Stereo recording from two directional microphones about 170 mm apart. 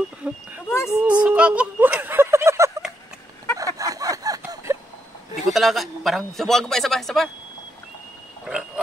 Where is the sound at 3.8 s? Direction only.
20° right (ahead or behind).